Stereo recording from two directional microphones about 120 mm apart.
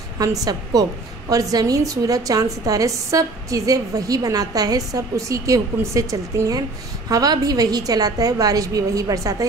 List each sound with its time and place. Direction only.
0.2 s a woman's voice: 30° right (ahead or behind)